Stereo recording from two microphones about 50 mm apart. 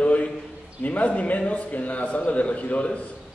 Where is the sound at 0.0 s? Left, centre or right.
Left.